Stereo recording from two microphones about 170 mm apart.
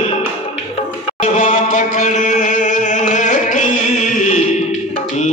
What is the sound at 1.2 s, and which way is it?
Music, 45° left (ahead or behind).